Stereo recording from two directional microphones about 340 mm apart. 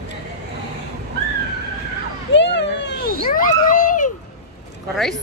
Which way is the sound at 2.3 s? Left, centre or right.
Left.